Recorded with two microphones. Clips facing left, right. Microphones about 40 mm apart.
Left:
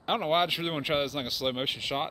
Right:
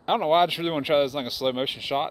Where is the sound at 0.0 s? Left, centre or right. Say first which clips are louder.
Right 6 dB; centre.